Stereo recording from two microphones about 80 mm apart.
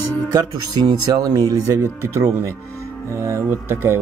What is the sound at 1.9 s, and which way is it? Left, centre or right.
Speech, right.